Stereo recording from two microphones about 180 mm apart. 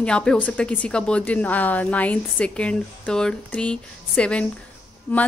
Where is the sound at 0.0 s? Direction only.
5° left (ahead or behind).